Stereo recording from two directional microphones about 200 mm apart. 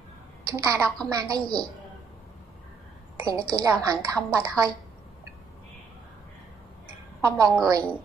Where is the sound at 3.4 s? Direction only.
15° right (ahead or behind).